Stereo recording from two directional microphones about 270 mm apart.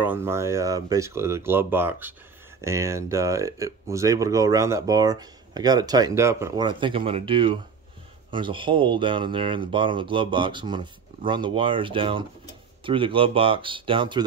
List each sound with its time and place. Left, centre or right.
0.0 s speech: centre